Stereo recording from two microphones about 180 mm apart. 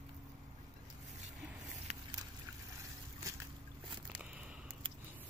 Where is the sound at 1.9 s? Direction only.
35° right (ahead or behind).